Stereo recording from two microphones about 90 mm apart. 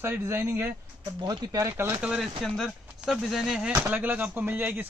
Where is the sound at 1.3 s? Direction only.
40° right (ahead or behind).